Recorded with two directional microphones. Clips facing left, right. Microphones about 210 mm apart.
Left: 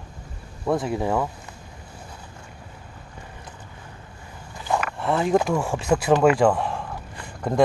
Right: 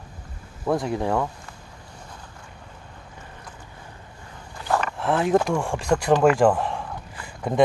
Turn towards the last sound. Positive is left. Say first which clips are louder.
# left 1 dB
turn(degrees=0)  # may be behind; listen again after turning